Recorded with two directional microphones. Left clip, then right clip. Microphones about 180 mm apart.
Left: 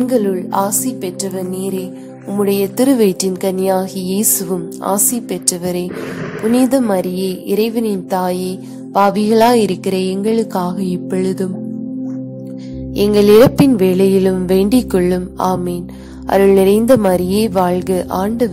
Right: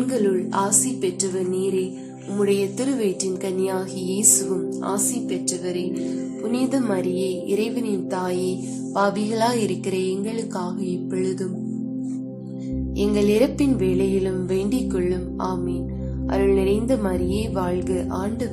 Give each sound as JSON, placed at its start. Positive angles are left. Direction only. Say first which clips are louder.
{"t": 0.0, "sound": "music", "louder": "left 6 dB", "side_deg": 50}
{"t": 2.3, "sound": "music", "louder": "left 6 dB", "side_deg": 50}
{"t": 5.5, "sound": "a woman's voice", "louder": "left 6 dB", "side_deg": 65}
{"t": 7.5, "sound": "music", "louder": "left 10 dB", "side_deg": 50}
{"t": 12.9, "sound": "music", "louder": "left 12 dB", "side_deg": 50}